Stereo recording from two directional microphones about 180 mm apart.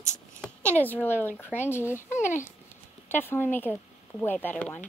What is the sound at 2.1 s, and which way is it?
Speech, 45° left (ahead or behind).